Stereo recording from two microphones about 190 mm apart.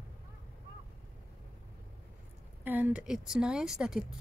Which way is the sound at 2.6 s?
10° right (ahead or behind).